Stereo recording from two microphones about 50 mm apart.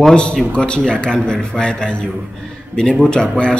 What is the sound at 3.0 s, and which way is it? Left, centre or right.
Speech, centre.